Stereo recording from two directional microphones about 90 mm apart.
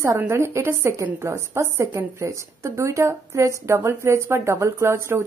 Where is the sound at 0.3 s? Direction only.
30° right (ahead or behind).